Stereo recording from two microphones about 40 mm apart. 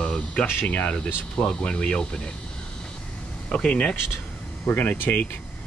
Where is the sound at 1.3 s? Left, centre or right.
Left.